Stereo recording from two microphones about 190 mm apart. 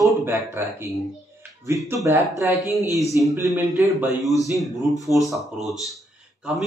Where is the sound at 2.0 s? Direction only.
15° right (ahead or behind).